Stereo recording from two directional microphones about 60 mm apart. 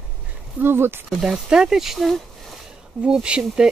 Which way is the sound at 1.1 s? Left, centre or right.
Centre.